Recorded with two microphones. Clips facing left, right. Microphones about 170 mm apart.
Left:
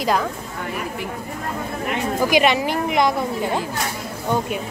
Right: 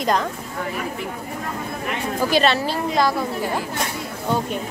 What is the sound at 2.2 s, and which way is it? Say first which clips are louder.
Speech: left 1 dB; 15° left (ahead or behind).